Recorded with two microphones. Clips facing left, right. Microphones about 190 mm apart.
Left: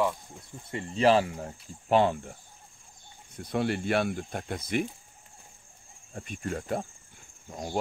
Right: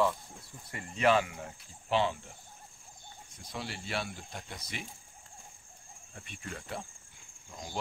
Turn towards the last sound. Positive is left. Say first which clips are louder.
# left 8 dB
turn(degrees=50)  # may be behind; listen again after turning